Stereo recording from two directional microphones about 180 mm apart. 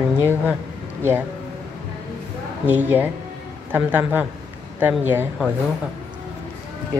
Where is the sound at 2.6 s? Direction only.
10° right (ahead or behind).